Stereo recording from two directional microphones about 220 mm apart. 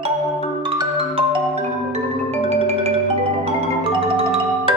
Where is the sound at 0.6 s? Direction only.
20° right (ahead or behind).